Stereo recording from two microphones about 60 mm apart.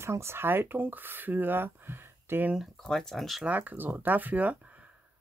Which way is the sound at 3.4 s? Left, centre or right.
Right.